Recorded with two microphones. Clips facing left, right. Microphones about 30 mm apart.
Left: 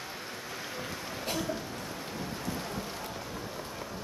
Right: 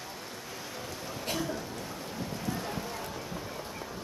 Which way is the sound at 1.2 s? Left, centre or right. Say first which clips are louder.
Even; centre.